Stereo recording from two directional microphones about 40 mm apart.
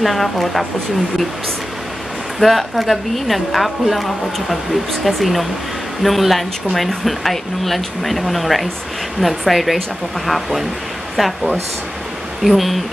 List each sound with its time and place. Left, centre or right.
0.0 s speech: centre
2.4 s speech: centre